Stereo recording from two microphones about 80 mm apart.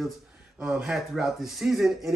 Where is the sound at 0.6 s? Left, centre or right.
Centre.